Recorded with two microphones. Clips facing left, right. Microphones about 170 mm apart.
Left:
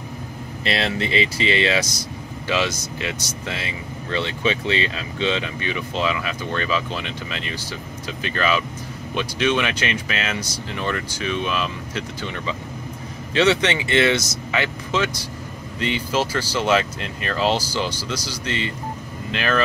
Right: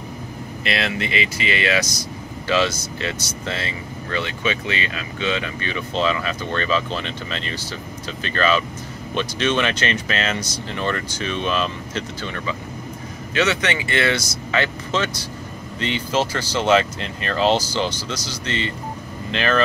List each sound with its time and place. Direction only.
0.7 s speech: 35° left (ahead or behind)
2.4 s speech: 15° left (ahead or behind)
4.1 s speech: 30° left (ahead or behind); by 12.0 s 5° left (ahead or behind)
12.2 s speech: 20° left (ahead or behind)
13.3 s speech: 30° left (ahead or behind); by 19.6 s 5° left (ahead or behind)